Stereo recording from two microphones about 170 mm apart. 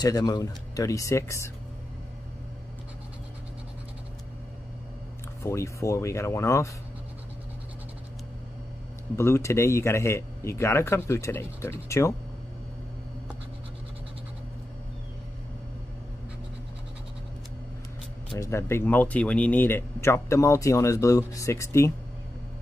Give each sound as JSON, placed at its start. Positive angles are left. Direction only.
{"t": 0.0, "sound": "speech", "side_deg": 25}
{"t": 5.4, "sound": "speech", "side_deg": 15}
{"t": 9.1, "sound": "speech", "side_deg": 15}
{"t": 18.4, "sound": "speech", "side_deg": 15}